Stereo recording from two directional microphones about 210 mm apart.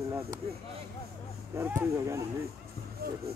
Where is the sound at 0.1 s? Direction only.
10° right (ahead or behind).